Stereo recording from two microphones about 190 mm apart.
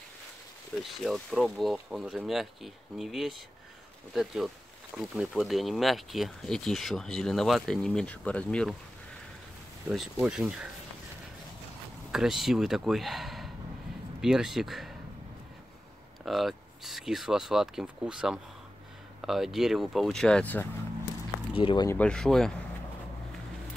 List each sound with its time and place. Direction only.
0.8 s speech: centre (ahead or behind)
9.8 s speech: 5° right (ahead or behind)
12.1 s speech: centre (ahead or behind)
16.3 s speech: centre (ahead or behind)
21.5 s speech: 30° left (ahead or behind)
21.8 s speech: 5° left (ahead or behind)